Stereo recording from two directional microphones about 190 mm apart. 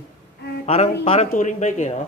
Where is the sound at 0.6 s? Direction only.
35° left (ahead or behind).